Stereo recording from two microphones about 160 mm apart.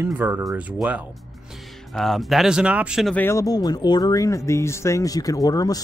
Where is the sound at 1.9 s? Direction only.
Centre (ahead or behind).